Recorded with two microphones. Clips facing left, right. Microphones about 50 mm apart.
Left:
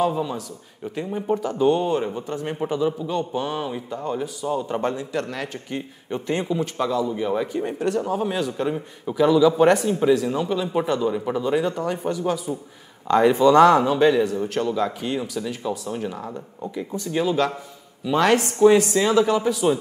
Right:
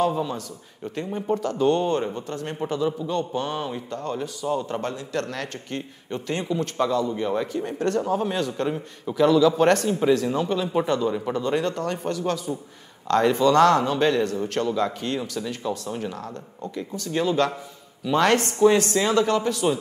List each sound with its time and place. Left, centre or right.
0.0 s a man's voice: centre; by 6.6 s left
6.6 s a man's voice: centre